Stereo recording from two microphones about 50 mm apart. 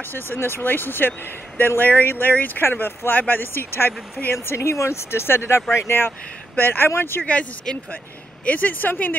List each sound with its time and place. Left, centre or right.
0.1 s speech: left
2.3 s speech: left
5.9 s speech: left
7.2 s speech: left
8.5 s speech: left